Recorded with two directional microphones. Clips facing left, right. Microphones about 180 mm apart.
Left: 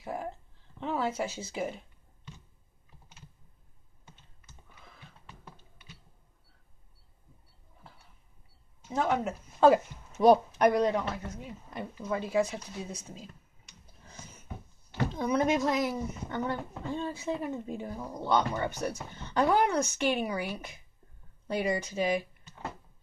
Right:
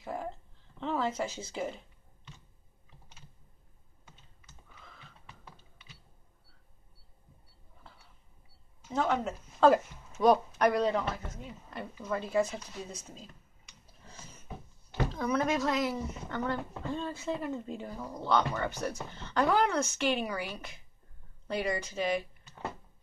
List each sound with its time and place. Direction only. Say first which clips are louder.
0.0 s speech: left 1 dB; 10° left (ahead or behind)
8.8 s speech: left 1 dB; 10° left (ahead or behind)
10.2 s speech: left 3 dB; 25° left (ahead or behind)
10.7 s speech: left 2 dB; 15° left (ahead or behind)
15.1 s speech: left 3 dB; 20° left (ahead or behind)